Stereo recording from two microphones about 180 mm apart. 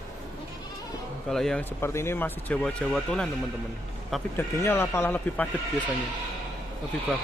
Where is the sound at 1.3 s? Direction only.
5° left (ahead or behind).